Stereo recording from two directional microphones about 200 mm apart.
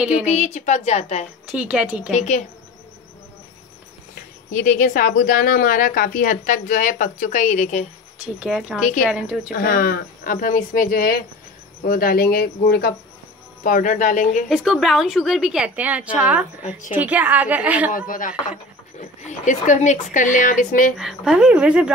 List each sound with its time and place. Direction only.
0.2 s speech: 35° left (ahead or behind)
1.6 s a woman's voice: 5° right (ahead or behind)
2.1 s speech: 35° left (ahead or behind)
4.5 s speech: 40° left (ahead or behind)
8.4 s a woman's voice: 5° right (ahead or behind)
9.5 s speech: 45° left (ahead or behind)
14.5 s a woman's voice: 5° right (ahead or behind)
17.9 s speech: 45° left (ahead or behind)
21.0 s a woman's voice: centre (ahead or behind)